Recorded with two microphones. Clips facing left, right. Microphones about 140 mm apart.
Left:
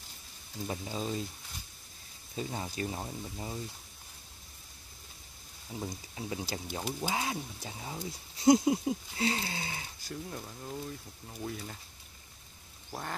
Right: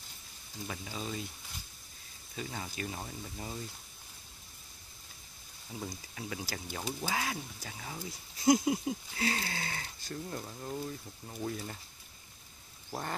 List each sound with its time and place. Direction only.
0.7 s speech: 30° left (ahead or behind)
2.3 s speech: 30° left (ahead or behind); by 3.6 s 15° left (ahead or behind)
5.7 s speech: 15° left (ahead or behind)
6.1 s speech: 25° left (ahead or behind)
6.8 s speech: 5° left (ahead or behind)
7.1 s speech: 25° left (ahead or behind)
10.3 s speech: 5° right (ahead or behind)